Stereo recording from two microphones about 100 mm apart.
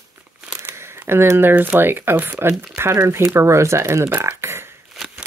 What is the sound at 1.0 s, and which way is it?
Speech, 25° right (ahead or behind).